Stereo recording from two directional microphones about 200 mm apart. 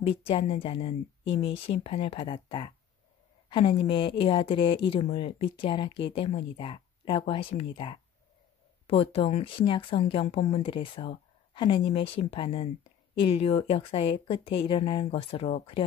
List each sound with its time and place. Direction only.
0.0 s speech: 25° left (ahead or behind)